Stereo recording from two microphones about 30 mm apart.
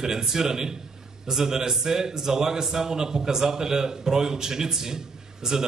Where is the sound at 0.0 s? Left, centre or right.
Centre.